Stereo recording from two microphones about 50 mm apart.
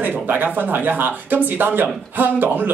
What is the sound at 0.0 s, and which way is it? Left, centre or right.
Speech, right.